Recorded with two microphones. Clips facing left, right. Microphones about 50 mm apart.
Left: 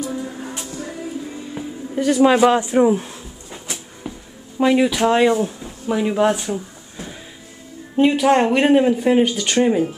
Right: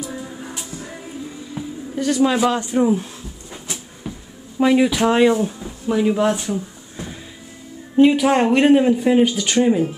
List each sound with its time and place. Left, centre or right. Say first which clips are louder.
1.5 s music: left 1 dB; centre
2.2 s a man's voice: left 6 dB; centre
4.1 s a sound: even; centre
4.6 s speech: even; centre